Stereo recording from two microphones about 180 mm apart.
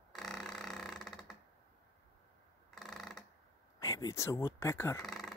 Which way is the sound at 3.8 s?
20° left (ahead or behind).